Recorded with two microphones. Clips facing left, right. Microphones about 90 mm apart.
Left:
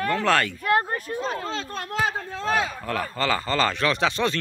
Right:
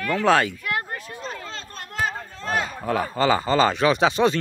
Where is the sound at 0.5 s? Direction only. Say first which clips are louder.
Left 6 dB; 35° left (ahead or behind).